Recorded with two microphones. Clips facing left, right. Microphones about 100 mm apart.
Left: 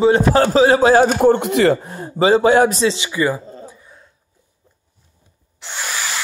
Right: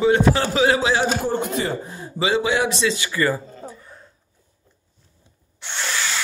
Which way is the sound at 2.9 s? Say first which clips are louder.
Left 3 dB; 20° left (ahead or behind).